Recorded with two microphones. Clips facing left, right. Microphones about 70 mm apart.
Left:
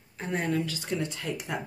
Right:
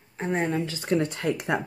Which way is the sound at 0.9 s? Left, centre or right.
Right.